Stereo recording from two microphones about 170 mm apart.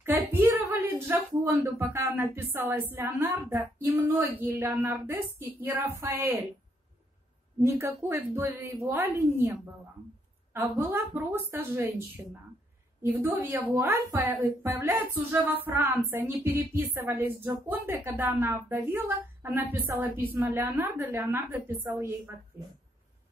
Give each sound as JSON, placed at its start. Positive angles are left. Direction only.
{"t": 0.0, "sound": "a sound", "side_deg": -10}
{"t": 2.9, "sound": "a woman's voice", "side_deg": -15}
{"t": 7.6, "sound": "a woman's voice", "side_deg": -15}
{"t": 10.5, "sound": "a woman's voice", "side_deg": -15}
{"t": 13.0, "sound": "a woman's voice", "side_deg": -15}